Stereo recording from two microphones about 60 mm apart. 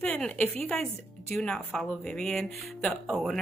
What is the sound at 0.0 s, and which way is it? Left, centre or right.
Speech, centre.